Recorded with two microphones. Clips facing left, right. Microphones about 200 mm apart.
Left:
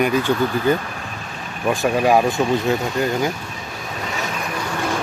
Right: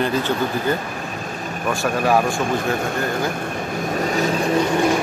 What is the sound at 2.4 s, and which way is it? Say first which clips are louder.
Speech: left 2 dB; 50° right (ahead or behind).